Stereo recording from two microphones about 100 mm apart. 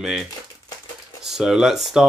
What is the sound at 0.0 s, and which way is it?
Speech, 5° right (ahead or behind).